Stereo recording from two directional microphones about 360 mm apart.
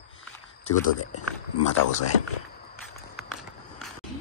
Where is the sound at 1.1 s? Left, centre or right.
Left.